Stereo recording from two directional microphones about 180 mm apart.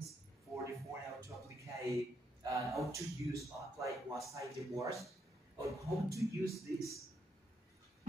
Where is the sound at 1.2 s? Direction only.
15° right (ahead or behind).